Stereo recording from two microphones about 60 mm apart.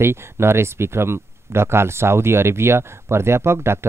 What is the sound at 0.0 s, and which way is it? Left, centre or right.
Speech, right.